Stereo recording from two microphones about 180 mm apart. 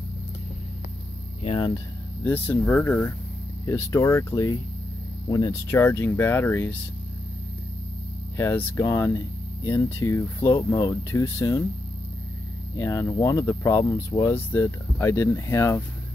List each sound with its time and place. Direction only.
1.4 s speech: 30° left (ahead or behind)
2.2 s speech: 10° left (ahead or behind)
8.4 s speech: 15° left (ahead or behind)
12.7 s speech: 15° left (ahead or behind)